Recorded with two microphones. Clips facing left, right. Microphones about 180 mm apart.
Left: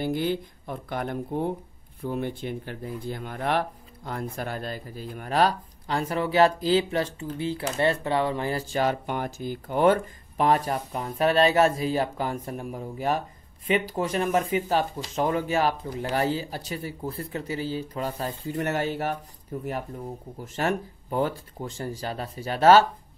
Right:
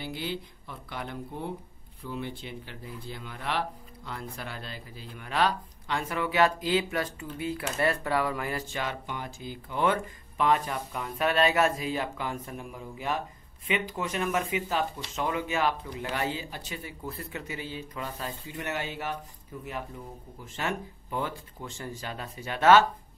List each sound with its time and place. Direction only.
0.0 s speech: 50° left (ahead or behind)
9.0 s speech: 55° left (ahead or behind); by 22.8 s 35° left (ahead or behind)